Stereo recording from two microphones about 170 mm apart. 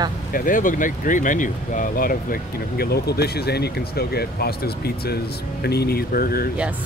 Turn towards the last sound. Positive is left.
turn(degrees=60)  # may be behind; listen again after turning